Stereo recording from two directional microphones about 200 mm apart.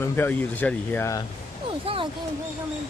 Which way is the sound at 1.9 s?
25° right (ahead or behind).